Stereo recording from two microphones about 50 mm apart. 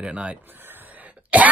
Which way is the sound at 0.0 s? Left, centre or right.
Right.